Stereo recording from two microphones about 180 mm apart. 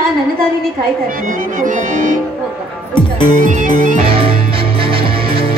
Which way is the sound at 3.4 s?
45° right (ahead or behind).